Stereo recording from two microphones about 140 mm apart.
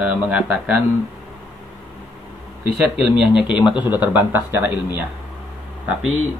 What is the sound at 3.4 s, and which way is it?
Speech, 35° left (ahead or behind).